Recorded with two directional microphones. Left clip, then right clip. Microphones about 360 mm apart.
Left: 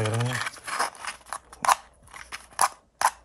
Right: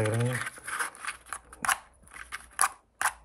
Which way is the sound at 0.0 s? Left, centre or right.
Centre.